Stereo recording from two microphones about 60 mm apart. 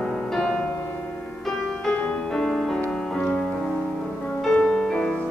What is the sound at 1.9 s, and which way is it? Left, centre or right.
Music, centre.